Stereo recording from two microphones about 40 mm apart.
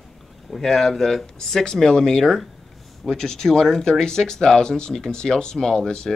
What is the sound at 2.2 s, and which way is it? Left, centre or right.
Speech, centre.